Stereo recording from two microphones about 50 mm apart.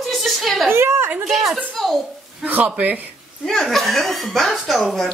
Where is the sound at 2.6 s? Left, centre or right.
Right.